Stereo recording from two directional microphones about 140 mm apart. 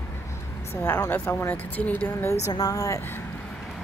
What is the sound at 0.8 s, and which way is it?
Speech, 15° left (ahead or behind).